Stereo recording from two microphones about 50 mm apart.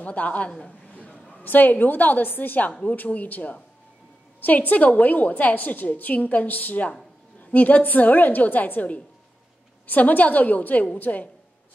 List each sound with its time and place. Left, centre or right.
0.0 s a man's voice: left
0.9 s a sound: left
1.4 s a woman's voice: left